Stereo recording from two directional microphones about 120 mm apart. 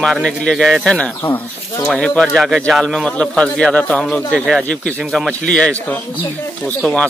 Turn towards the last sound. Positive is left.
turn(degrees=10)  # may be behind; listen again after turning